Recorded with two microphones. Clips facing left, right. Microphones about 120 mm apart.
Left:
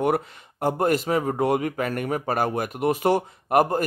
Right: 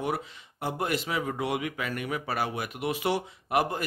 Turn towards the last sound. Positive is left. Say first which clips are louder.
# left 7 dB
turn(degrees=45)  # may be behind; listen again after turning